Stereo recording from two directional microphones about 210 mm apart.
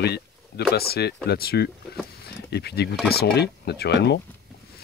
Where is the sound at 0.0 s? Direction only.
50° left (ahead or behind).